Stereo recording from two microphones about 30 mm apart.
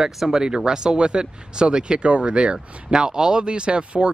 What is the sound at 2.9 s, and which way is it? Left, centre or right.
Speech, right.